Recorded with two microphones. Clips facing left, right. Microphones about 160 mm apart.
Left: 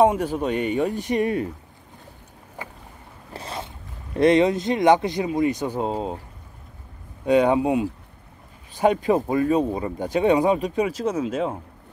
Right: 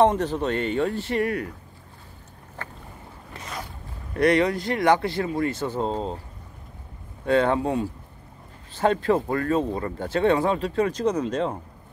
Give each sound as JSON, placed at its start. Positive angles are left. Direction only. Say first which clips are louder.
{"t": 0.0, "sound": "speech", "louder": "left 1 dB", "side_deg": 10}
{"t": 2.6, "sound": "boat", "louder": "left 1 dB", "side_deg": 10}
{"t": 3.3, "sound": "boat", "louder": "left 3 dB", "side_deg": 30}
{"t": 4.2, "sound": "speech", "louder": "left 3 dB", "side_deg": 20}
{"t": 7.2, "sound": "speech", "louder": "left 3 dB", "side_deg": 15}